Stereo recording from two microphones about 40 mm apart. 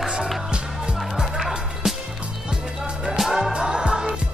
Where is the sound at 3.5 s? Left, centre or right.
Centre.